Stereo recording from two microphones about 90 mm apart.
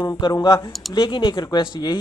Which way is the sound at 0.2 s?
50° left (ahead or behind).